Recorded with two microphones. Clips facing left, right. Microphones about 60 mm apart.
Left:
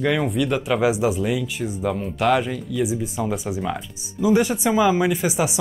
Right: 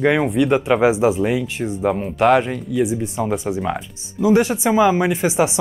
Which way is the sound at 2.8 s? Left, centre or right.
Centre.